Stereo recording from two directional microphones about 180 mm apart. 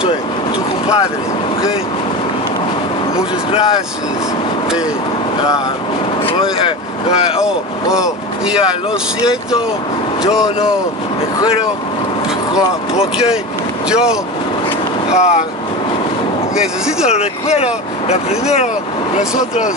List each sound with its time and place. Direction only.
6.3 s speech: 30° left (ahead or behind)
7.3 s speech: 5° right (ahead or behind)
10.2 s speech: 5° right (ahead or behind)
13.8 s speech: 5° right (ahead or behind)
15.1 s speech: 40° left (ahead or behind)
17.1 s speech: 35° left (ahead or behind)